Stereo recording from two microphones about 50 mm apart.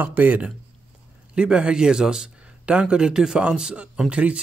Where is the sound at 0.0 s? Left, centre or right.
Right.